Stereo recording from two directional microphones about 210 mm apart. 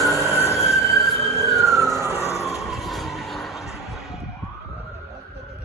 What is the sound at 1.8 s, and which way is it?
Emergency vehicle, 10° right (ahead or behind).